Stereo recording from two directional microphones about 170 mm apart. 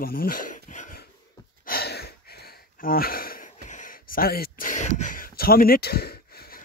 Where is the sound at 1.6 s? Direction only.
70° left (ahead or behind).